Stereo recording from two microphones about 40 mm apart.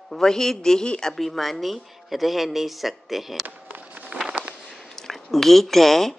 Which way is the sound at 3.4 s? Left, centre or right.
Right.